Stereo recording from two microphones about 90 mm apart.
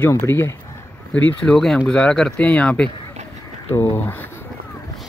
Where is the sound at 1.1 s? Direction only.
10° left (ahead or behind).